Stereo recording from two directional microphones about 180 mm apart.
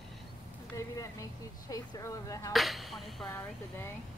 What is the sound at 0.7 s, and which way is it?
Vehicle, 20° left (ahead or behind).